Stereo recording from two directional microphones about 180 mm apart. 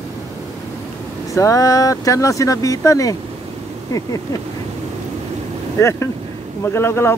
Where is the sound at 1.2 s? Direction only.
15° left (ahead or behind).